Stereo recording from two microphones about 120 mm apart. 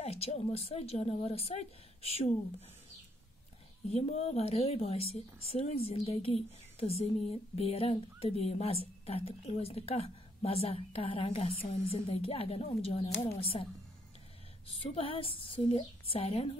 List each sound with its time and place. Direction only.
0.0 s a woman's voice: 60° left (ahead or behind)
3.9 s a woman's voice: 60° left (ahead or behind)
15.0 s a woman's voice: 50° left (ahead or behind)